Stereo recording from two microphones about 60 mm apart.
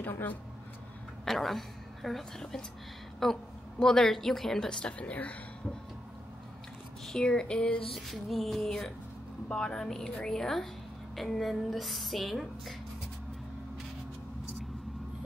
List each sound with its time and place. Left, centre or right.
1.2 s a woman's voice: centre; by 5.3 s left
7.1 s a woman's voice: centre
7.9 s a woman's voice: centre